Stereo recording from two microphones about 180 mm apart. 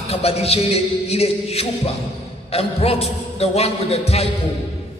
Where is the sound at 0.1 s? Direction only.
35° left (ahead or behind).